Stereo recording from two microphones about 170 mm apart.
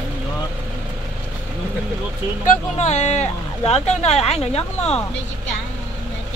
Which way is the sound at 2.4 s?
45° left (ahead or behind).